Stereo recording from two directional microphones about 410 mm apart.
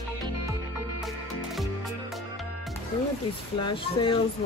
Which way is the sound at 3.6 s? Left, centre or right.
Centre.